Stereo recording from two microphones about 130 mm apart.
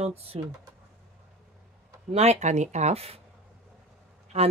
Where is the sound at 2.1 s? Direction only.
55° right (ahead or behind).